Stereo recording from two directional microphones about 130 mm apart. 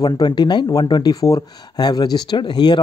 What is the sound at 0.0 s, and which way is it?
Speech, 35° left (ahead or behind).